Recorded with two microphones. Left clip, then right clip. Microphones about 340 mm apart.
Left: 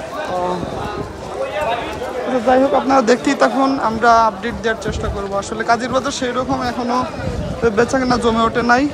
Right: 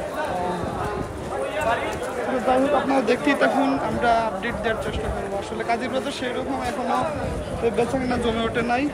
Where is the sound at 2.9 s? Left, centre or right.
Left.